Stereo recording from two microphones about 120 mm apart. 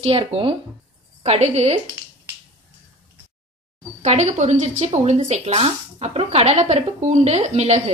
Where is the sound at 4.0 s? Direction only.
70° right (ahead or behind).